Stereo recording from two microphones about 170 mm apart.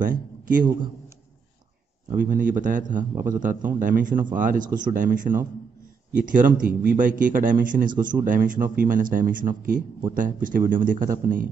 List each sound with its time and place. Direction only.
0.0 s a man's voice: 50° right (ahead or behind)
2.1 s a man's voice: 50° right (ahead or behind)